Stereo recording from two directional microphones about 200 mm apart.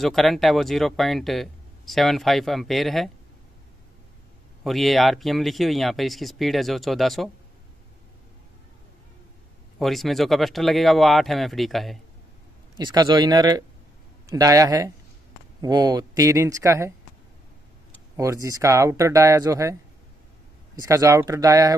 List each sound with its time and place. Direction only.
0.0 s speech: centre (ahead or behind)
4.6 s speech: centre (ahead or behind)
9.8 s speech: centre (ahead or behind)
12.7 s speech: 20° right (ahead or behind)
18.1 s speech: 15° right (ahead or behind)